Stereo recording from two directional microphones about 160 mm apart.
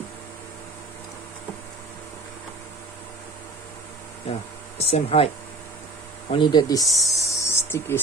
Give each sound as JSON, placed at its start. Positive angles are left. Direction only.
{"t": 4.7, "sound": "speech", "side_deg": 40}
{"t": 6.3, "sound": "speech", "side_deg": 30}
{"t": 6.9, "sound": "speech", "side_deg": 0}
{"t": 7.2, "sound": "a sound", "side_deg": 15}